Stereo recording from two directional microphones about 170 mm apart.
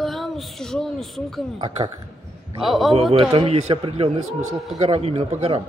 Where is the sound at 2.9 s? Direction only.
35° right (ahead or behind).